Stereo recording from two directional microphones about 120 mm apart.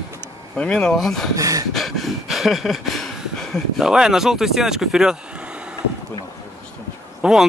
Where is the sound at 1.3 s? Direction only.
30° right (ahead or behind).